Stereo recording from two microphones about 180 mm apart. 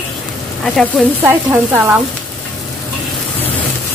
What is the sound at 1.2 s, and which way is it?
Speech, 10° right (ahead or behind).